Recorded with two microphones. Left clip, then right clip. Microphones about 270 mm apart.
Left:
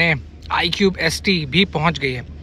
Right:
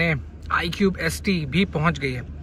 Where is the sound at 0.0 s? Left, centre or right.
Centre.